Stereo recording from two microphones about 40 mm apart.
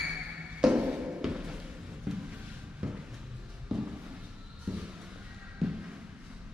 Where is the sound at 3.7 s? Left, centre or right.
Centre.